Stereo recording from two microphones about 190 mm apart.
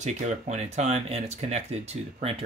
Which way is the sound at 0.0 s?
35° right (ahead or behind).